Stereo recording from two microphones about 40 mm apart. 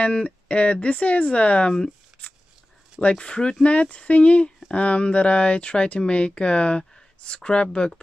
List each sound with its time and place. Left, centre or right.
0.0 s speech: left
3.2 s speech: left